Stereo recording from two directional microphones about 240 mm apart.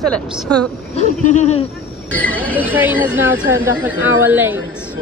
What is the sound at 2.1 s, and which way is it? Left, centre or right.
Speech, centre.